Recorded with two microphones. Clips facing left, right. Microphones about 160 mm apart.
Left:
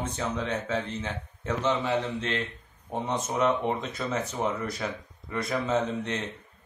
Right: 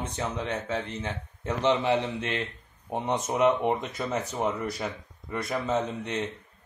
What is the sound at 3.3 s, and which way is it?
Speech, 10° right (ahead or behind).